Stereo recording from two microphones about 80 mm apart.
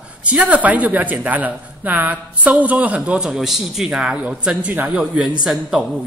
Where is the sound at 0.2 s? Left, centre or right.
Centre.